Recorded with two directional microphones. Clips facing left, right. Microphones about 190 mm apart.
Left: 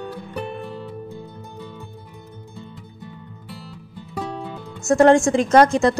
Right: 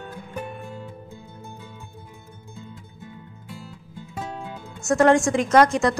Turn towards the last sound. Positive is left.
turn(degrees=30)  # may be behind; listen again after turning